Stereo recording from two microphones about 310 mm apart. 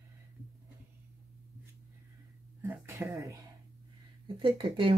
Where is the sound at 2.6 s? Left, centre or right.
Centre.